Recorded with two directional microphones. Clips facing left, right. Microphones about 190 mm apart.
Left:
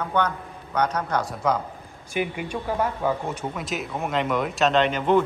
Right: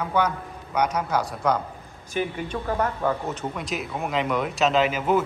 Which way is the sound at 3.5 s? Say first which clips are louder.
Even; centre (ahead or behind).